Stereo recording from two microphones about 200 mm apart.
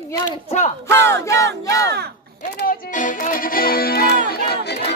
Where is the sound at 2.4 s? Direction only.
40° left (ahead or behind).